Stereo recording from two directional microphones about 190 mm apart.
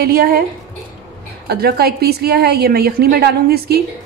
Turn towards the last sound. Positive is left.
turn(degrees=-55)  # may be behind; listen again after turning